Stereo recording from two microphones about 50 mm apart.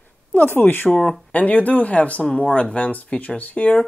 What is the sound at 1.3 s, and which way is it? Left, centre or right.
Speech, left.